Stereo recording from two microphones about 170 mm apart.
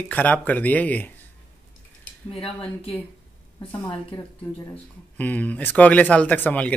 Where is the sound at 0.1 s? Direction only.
10° left (ahead or behind).